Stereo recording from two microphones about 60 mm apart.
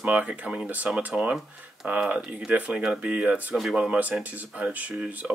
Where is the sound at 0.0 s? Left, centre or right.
Right.